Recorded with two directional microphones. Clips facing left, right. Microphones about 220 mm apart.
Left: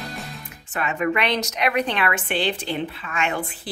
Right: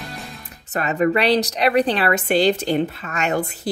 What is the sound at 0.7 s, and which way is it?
A woman's voice, 40° right (ahead or behind).